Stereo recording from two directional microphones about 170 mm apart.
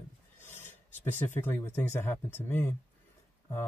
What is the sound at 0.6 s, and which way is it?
Speech, 10° left (ahead or behind).